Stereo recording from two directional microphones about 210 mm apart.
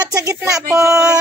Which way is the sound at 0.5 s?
15° right (ahead or behind).